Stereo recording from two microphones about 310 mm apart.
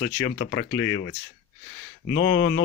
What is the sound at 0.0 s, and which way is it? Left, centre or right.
Speech, left.